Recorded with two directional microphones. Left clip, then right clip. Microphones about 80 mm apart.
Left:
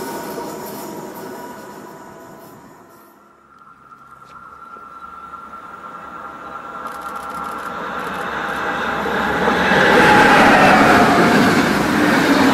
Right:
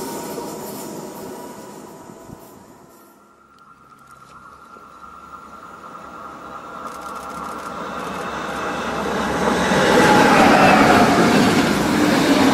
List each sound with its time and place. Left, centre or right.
0.1 s train: centre
1.2 s train: right
1.7 s train: centre
6.3 s a sound: right
7.2 s sewing machine: centre
7.7 s vehicle: right
9.9 s vehicle: centre